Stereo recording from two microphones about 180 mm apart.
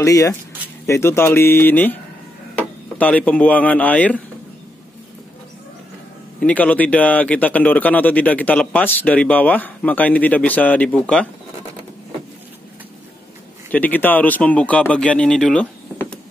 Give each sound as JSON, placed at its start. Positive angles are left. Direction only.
{"t": 0.0, "sound": "speech", "side_deg": 15}
{"t": 3.0, "sound": "speech", "side_deg": 10}
{"t": 6.4, "sound": "speech", "side_deg": 10}
{"t": 13.7, "sound": "speech", "side_deg": 10}